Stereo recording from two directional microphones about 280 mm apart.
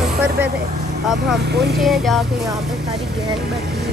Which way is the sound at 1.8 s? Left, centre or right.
Centre.